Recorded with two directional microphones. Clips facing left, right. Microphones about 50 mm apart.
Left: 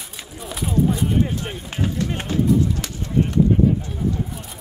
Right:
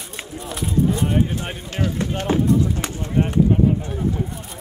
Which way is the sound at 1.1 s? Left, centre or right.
Right.